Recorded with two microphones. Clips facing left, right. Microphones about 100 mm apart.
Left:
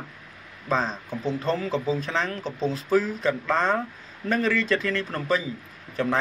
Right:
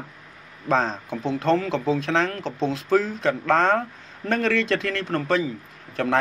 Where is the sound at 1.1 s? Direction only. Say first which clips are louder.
Right 6 dB; 80° right.